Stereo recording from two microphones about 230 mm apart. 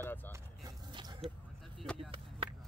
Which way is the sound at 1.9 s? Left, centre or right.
Centre.